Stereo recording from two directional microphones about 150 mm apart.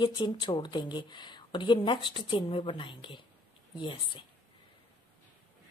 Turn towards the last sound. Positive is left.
turn(degrees=35)  # may be behind; listen again after turning